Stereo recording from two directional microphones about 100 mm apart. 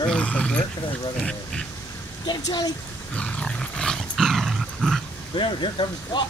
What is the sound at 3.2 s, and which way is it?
Dog, 10° left (ahead or behind).